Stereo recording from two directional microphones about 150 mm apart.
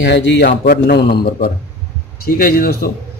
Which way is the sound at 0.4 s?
90° left.